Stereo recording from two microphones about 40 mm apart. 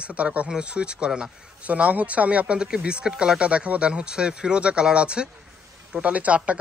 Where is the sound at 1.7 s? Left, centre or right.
Right.